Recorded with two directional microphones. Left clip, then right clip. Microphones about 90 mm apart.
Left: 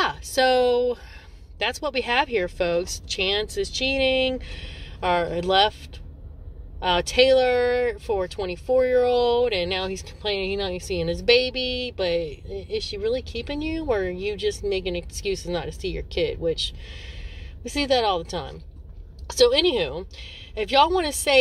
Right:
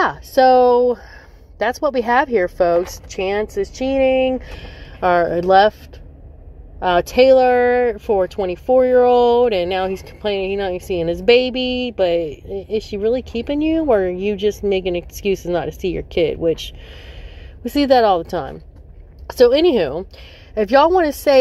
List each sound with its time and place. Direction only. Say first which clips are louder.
0.0 s speech: right 8 dB; 50° right (ahead or behind)
2.0 s speech: right 6 dB; centre (ahead or behind); by 4.4 s 15° left (ahead or behind)
4.5 s speech: right 3 dB; 75° right (ahead or behind); by 5.8 s 55° right (ahead or behind)
6.8 s speech: right 6 dB; 50° right (ahead or behind); by 17.0 s 70° right (ahead or behind)
17.6 s speech: right 9 dB; 90° right; by 18.6 s 65° right (ahead or behind)
19.3 s speech: right 6 dB; 80° right